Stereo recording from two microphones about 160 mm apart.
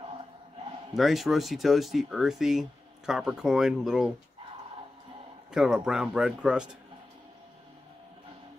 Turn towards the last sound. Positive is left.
turn(degrees=-5)  # may be behind; listen again after turning